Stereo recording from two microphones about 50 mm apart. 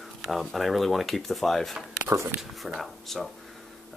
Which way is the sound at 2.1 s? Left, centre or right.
Right.